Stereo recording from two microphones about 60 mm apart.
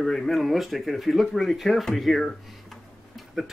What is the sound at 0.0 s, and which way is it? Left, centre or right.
Speech, centre.